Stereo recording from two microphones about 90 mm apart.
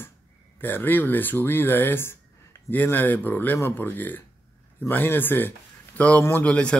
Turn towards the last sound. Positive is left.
turn(degrees=15)  # may be behind; listen again after turning